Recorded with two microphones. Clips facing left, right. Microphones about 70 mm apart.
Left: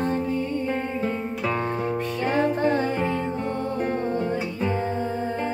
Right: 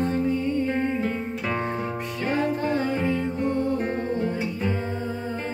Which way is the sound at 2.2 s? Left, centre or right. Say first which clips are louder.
Left 2 dB; left.